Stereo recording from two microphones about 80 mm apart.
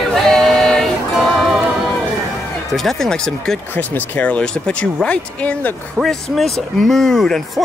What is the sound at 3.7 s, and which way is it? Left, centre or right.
Speech, centre.